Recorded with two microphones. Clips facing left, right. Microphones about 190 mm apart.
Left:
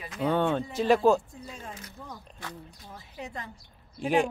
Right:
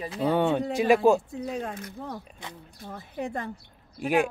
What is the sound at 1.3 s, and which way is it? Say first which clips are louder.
Speech: right 10 dB; 65° right (ahead or behind).